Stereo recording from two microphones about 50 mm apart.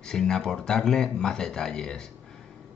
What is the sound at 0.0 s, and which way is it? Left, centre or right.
A man's voice, centre.